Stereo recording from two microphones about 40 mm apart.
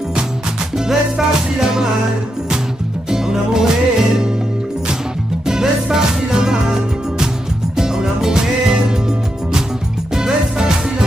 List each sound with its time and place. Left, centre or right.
0.8 s music: centre
3.1 s music: centre
5.5 s music: centre
10.1 s music: centre